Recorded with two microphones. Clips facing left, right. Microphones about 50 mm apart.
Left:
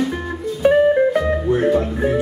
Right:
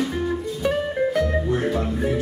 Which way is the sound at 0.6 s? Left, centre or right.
Left.